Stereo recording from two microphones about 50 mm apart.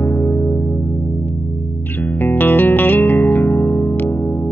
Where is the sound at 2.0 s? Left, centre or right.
Left.